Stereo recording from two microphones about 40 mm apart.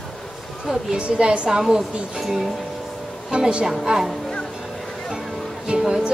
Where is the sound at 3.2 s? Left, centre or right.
Right.